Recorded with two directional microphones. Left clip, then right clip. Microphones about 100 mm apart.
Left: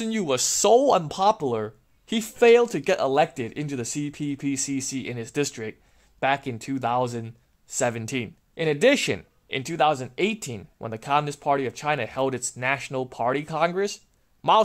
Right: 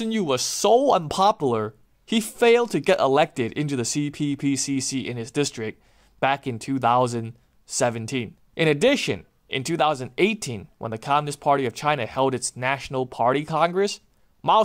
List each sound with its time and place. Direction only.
0.0 s speech: 5° right (ahead or behind)
1.0 s speech: 35° right (ahead or behind); by 5.6 s 10° right (ahead or behind)
5.6 s speech: 25° right (ahead or behind)
7.8 s speech: 5° right (ahead or behind)
9.6 s speech: 25° right (ahead or behind)